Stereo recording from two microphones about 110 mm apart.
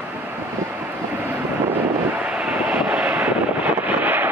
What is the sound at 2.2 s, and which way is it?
Vehicle, 10° right (ahead or behind).